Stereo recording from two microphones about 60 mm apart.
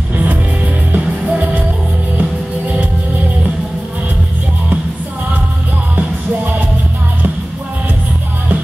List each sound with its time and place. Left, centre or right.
0.1 s music: right